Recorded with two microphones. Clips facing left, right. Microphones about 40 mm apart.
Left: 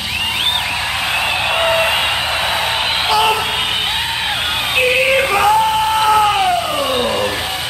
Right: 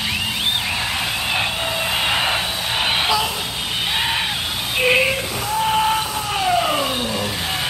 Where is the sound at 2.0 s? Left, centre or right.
Centre.